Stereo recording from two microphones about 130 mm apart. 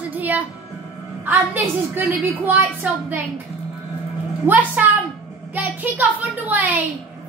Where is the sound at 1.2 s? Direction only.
15° right (ahead or behind).